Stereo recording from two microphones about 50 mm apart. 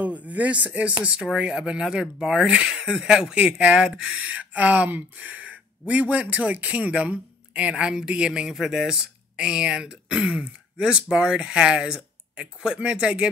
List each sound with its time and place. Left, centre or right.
0.0 s speech: right